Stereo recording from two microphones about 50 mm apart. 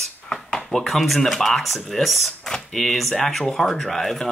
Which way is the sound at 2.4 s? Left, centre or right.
Centre.